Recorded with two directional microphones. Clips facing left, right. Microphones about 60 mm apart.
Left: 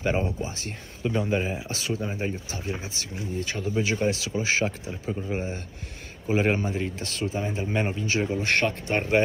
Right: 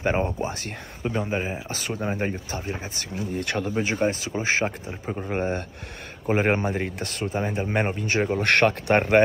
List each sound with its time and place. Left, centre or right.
0.0 s speech: right
1.0 s speech: right
1.7 s speech: right
3.3 s speech: right
3.7 s speech: right
8.5 s speech: right